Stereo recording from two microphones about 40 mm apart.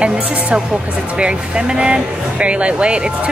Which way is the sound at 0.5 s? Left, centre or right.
Right.